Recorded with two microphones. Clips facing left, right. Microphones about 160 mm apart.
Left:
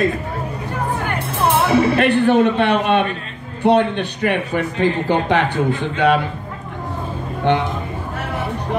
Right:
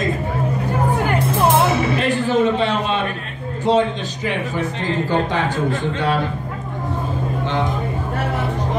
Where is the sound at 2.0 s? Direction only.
60° left (ahead or behind).